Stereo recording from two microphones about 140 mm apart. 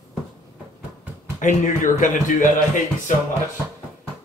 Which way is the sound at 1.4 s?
65° left (ahead or behind).